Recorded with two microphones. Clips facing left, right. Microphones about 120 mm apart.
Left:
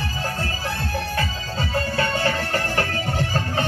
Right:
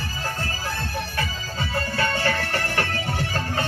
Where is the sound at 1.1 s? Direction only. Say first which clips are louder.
Left 3 dB; 25° left (ahead or behind).